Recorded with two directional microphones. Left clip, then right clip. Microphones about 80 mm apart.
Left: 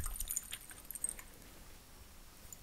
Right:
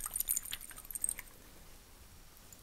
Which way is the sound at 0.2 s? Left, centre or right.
Right.